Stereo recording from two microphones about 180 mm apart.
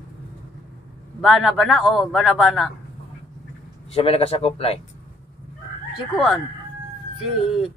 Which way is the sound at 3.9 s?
35° left (ahead or behind).